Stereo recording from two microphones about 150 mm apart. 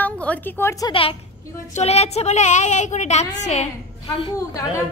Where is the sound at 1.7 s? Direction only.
45° left (ahead or behind).